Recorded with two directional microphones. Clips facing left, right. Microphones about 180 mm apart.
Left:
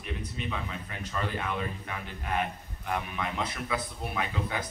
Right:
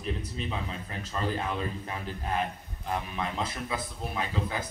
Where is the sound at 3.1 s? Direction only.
30° right (ahead or behind).